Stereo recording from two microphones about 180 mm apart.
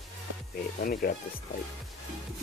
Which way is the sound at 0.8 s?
50° left (ahead or behind).